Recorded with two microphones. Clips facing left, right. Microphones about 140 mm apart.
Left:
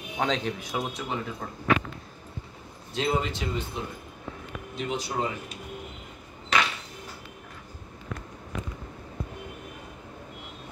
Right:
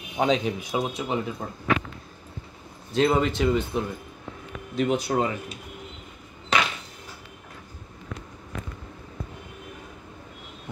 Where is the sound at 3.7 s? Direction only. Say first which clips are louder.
Right 7 dB; 55° right (ahead or behind).